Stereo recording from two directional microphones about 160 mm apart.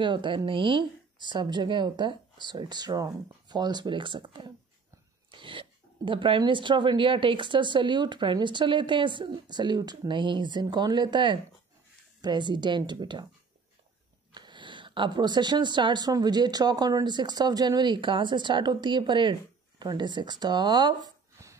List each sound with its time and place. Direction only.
0.0 s speech: 30° right (ahead or behind)
14.3 s speech: 30° right (ahead or behind)